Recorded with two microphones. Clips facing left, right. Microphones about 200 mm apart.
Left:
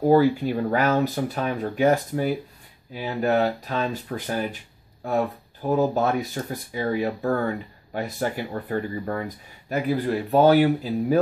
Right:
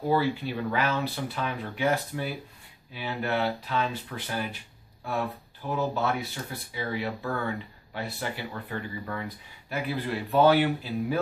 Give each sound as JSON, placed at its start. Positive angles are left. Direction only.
{"t": 0.0, "sound": "speech", "side_deg": 45}